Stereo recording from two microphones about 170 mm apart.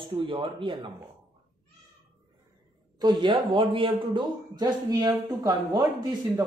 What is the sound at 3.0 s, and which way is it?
Speech, 25° right (ahead or behind).